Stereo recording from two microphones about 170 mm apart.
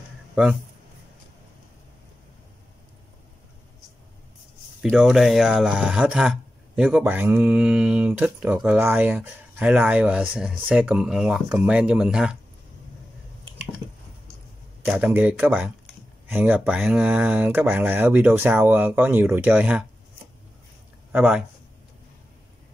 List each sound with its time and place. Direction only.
4.8 s speech: centre (ahead or behind)
14.9 s speech: 10° right (ahead or behind)
21.1 s speech: 10° right (ahead or behind)